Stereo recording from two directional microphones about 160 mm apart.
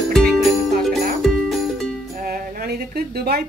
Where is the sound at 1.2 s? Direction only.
Centre (ahead or behind).